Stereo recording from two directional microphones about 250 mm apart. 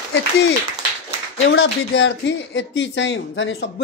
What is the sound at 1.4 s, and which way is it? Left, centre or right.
Speech, left.